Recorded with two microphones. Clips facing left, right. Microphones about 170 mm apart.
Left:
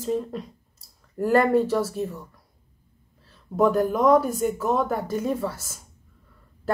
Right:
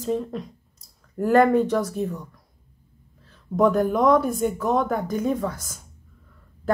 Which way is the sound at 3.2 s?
35° left (ahead or behind).